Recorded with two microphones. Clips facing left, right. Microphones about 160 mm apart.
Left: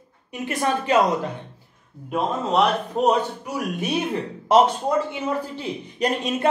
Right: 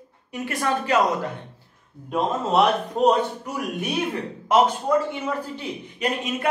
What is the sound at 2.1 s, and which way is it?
Speech, centre (ahead or behind).